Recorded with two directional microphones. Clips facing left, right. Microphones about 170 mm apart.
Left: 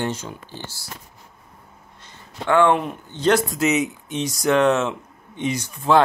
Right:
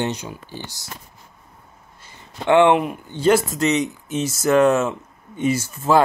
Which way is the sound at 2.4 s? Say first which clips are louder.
Right 3 dB; 20° right (ahead or behind).